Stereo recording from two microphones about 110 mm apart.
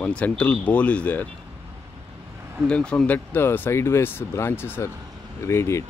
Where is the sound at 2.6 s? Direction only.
10° left (ahead or behind).